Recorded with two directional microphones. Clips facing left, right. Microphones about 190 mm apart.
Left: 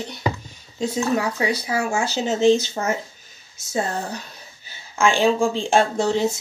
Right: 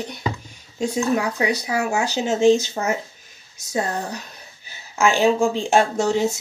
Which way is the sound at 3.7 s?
15° right (ahead or behind).